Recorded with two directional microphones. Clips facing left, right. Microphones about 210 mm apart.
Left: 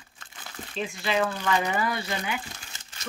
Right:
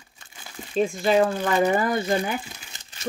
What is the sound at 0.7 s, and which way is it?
Speech, 45° right (ahead or behind).